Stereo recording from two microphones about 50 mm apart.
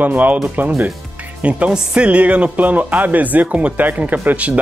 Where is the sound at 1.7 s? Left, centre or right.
Right.